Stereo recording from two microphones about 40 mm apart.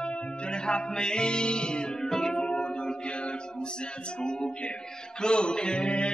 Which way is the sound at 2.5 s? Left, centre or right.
Left.